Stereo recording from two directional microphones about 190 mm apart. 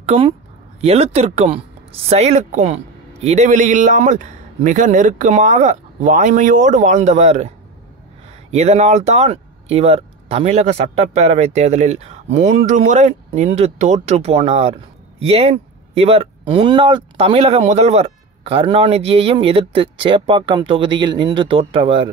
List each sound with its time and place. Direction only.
0.0 s a woman's voice: 30° right (ahead or behind)